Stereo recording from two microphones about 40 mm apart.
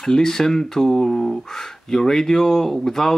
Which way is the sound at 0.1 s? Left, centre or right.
Centre.